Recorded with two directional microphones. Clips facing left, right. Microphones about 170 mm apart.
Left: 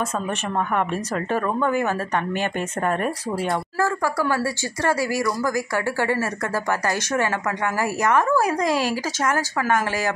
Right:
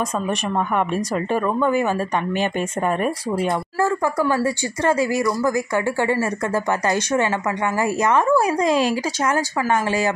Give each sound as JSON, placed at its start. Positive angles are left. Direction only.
{"t": 0.7, "sound": "a woman's voice", "side_deg": -15}